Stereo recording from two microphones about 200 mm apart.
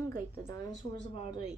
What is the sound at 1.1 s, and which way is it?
Speech, 30° left (ahead or behind).